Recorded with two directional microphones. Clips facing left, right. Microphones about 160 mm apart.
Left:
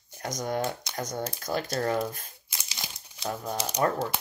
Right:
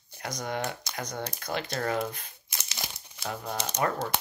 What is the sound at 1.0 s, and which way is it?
Speech, 45° left (ahead or behind).